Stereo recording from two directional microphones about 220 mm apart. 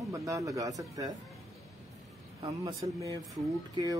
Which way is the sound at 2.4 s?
15° right (ahead or behind).